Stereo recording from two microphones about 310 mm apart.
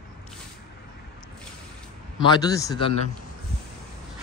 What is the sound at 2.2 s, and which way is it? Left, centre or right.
Speech, centre.